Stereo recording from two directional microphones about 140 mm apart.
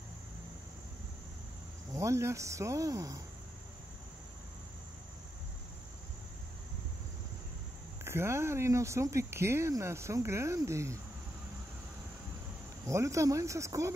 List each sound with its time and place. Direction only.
1.9 s speech: 20° right (ahead or behind)
8.0 s speech: 20° right (ahead or behind)
12.8 s speech: 20° right (ahead or behind)